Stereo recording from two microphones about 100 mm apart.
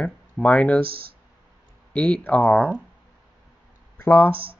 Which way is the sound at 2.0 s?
10° left (ahead or behind).